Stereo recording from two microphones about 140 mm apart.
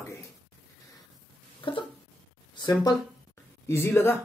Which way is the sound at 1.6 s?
35° left (ahead or behind).